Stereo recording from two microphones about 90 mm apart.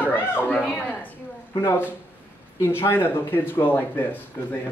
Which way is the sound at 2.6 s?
25° left (ahead or behind).